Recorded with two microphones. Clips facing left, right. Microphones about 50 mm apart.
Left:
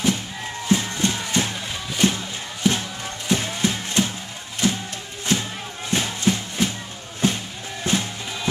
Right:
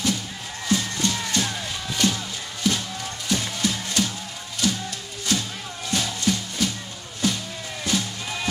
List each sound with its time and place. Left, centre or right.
0.7 s music: left